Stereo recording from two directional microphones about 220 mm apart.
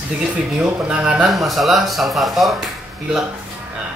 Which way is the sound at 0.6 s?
5° right (ahead or behind).